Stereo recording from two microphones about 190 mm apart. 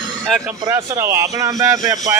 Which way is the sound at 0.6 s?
15° right (ahead or behind).